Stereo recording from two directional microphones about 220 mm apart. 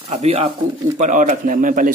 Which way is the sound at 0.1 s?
30° right (ahead or behind).